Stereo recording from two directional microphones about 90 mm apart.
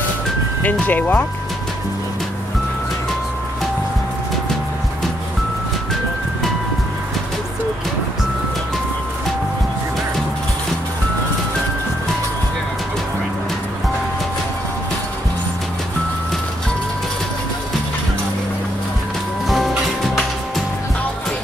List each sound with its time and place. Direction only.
0.7 s speech: 20° left (ahead or behind)
19.4 s music: centre (ahead or behind)